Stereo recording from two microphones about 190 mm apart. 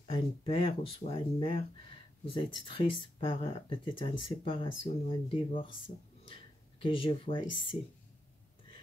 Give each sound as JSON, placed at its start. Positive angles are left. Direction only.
{"t": 0.1, "sound": "speech", "side_deg": 25}
{"t": 6.8, "sound": "speech", "side_deg": 25}